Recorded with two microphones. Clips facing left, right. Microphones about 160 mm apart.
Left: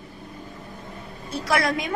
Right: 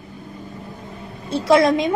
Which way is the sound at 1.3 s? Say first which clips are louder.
Right 9 dB; 25° right (ahead or behind).